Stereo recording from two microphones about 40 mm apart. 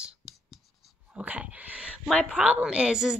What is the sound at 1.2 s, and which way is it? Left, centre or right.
Speech, right.